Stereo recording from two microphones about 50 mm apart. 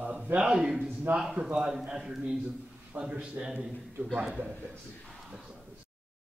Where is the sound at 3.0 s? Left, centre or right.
Right.